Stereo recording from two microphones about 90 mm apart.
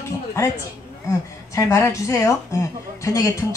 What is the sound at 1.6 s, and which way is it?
Speech, 35° left (ahead or behind).